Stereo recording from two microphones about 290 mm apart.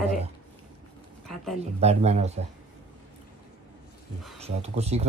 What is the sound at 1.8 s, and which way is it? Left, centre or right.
Speech, right.